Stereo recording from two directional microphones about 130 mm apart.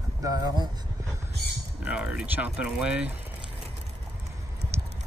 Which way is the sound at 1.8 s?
10° right (ahead or behind).